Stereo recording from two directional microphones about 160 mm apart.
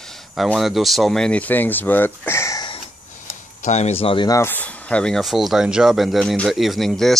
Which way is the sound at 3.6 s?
45° left (ahead or behind).